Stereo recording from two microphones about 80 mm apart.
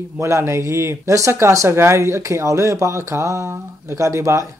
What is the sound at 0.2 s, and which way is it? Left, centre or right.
Speech, right.